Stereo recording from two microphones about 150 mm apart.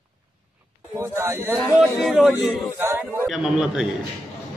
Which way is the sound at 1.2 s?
15° right (ahead or behind).